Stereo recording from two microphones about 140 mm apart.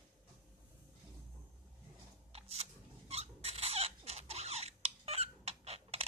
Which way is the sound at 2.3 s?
45° right (ahead or behind).